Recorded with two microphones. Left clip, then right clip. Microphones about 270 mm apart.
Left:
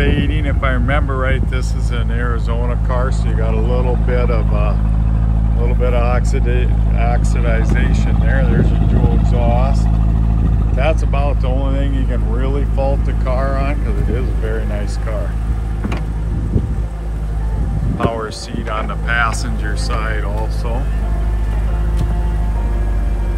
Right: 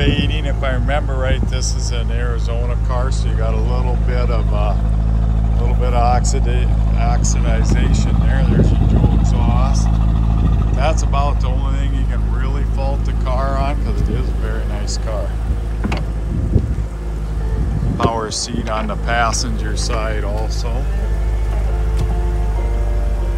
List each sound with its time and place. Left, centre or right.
0.0 s speech: centre
17.9 s speech: right